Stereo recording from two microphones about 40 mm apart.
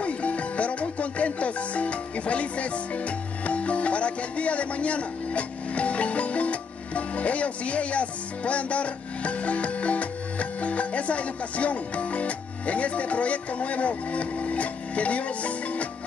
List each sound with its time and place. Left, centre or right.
0.0 s music: left
3.4 s speech: left